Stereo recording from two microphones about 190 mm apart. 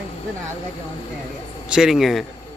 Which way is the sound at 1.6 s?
5° right (ahead or behind).